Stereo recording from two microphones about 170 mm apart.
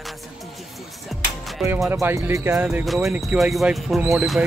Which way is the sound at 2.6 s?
Centre (ahead or behind).